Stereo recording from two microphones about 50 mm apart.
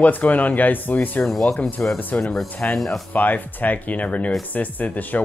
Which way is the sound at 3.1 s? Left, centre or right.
Left.